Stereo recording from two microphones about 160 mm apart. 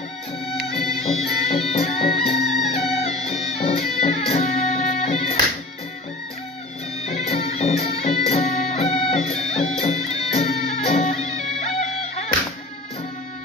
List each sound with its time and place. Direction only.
1.0 s music: 40° left (ahead or behind)
7.1 s music: 40° left (ahead or behind)